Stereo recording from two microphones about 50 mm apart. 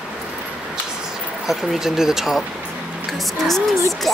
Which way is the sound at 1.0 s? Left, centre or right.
Centre.